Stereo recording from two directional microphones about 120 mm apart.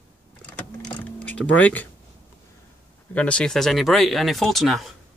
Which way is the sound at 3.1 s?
10° left (ahead or behind).